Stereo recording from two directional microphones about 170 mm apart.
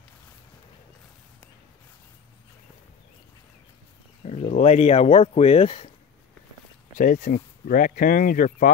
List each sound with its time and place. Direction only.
4.2 s speech: 40° left (ahead or behind)
7.0 s speech: 50° left (ahead or behind)